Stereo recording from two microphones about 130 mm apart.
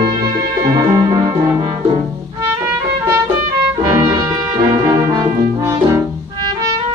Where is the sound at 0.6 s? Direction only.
25° right (ahead or behind).